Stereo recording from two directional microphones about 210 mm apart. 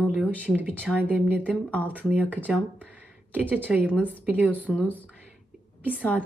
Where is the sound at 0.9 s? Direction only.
5° right (ahead or behind).